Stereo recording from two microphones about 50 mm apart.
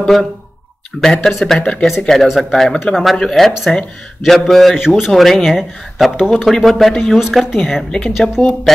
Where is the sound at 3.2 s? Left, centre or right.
Centre.